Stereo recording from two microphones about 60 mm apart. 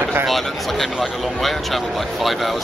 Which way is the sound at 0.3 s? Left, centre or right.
Centre.